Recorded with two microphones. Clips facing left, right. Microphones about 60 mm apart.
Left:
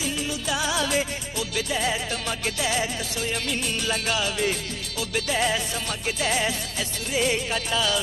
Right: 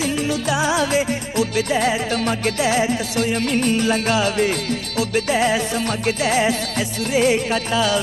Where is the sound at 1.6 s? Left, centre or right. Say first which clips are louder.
Right 7 dB; right.